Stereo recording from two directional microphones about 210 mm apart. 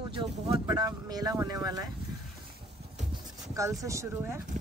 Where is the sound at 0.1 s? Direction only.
25° right (ahead or behind).